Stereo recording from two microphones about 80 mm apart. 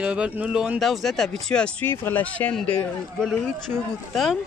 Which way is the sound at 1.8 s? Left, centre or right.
Left.